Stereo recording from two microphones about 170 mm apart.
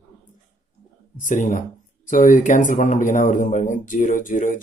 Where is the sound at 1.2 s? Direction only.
50° left (ahead or behind).